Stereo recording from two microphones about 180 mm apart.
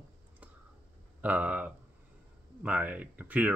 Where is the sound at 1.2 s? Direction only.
10° right (ahead or behind).